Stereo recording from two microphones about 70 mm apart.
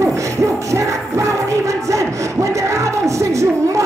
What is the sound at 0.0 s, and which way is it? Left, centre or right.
Music, right.